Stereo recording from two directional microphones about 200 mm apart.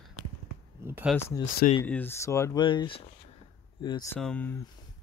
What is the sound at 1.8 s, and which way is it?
Speech, 10° left (ahead or behind).